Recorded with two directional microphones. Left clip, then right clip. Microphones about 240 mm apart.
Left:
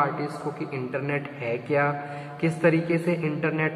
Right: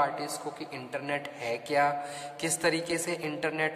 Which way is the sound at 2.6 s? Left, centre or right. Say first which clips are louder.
Left 6 dB; right.